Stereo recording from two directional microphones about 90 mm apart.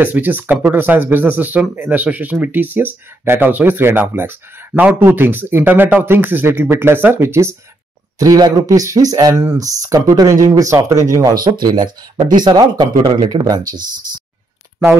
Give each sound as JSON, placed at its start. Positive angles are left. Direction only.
{"t": 0.0, "sound": "speech", "side_deg": -20}
{"t": 8.2, "sound": "speech", "side_deg": -45}